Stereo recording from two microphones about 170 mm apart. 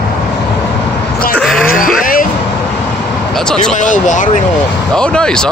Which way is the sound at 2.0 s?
55° left (ahead or behind).